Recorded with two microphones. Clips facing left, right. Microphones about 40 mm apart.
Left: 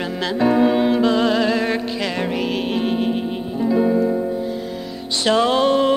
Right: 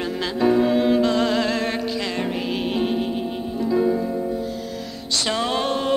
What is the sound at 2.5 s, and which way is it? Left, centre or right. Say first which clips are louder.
Music: left 2 dB; centre.